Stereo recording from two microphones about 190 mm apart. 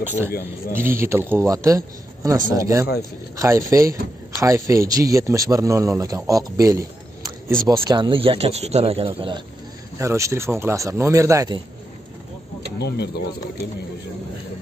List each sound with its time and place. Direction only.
0.3 s speech: 50° left (ahead or behind)
0.7 s speech: 10° right (ahead or behind)
9.9 s speech: 15° right (ahead or behind)
12.7 s speech: 60° left (ahead or behind)